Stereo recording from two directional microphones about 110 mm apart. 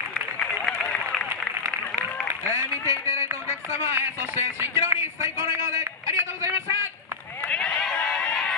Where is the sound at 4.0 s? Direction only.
20° right (ahead or behind).